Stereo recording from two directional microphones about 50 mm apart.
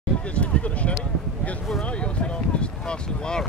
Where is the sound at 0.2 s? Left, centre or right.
Left.